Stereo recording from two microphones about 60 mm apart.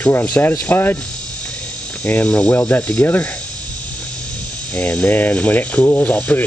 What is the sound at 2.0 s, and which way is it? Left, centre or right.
Speech, left.